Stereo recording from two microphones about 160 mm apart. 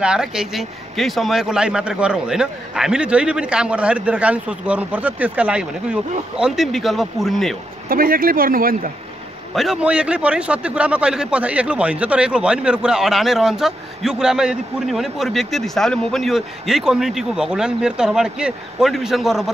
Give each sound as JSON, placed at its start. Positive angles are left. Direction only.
{"t": 0.0, "sound": "a man's voice", "side_deg": -5}
{"t": 7.9, "sound": "speech", "side_deg": -65}
{"t": 9.6, "sound": "a man's voice", "side_deg": -5}